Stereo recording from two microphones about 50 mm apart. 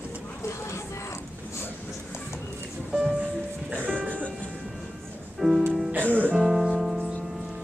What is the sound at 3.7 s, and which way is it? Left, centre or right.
Music, right.